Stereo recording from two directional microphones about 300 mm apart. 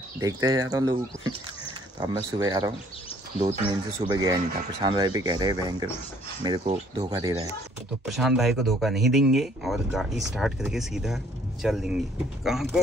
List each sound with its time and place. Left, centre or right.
0.2 s speech: centre
4.0 s speech: centre
8.0 s speech: centre